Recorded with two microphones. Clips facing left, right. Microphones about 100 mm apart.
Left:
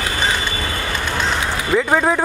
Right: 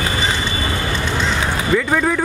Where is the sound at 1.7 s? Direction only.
25° left (ahead or behind).